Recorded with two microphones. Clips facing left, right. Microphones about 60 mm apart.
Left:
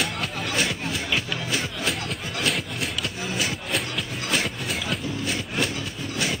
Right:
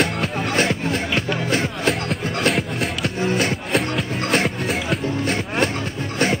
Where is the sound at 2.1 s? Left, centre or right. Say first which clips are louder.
Right 6 dB; right.